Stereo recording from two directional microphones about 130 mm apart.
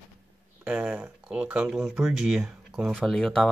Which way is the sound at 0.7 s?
15° right (ahead or behind).